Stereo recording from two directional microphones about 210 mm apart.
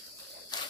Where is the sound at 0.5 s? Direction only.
20° left (ahead or behind).